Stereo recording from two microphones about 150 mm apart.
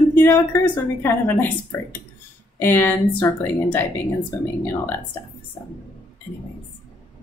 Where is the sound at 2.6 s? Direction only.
15° left (ahead or behind).